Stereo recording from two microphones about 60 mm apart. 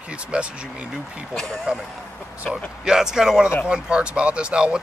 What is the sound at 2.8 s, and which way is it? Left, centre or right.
Speech, centre.